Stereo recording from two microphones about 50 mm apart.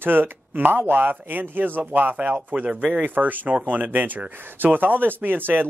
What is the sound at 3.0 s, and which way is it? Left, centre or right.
Speech, right.